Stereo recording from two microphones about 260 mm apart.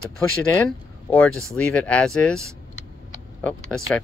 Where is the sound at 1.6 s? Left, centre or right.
Centre.